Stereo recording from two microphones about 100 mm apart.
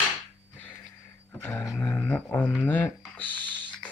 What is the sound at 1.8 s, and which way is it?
Speech, 15° left (ahead or behind).